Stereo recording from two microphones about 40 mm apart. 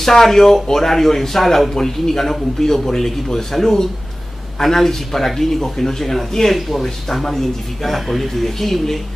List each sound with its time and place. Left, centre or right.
0.0 s speech: centre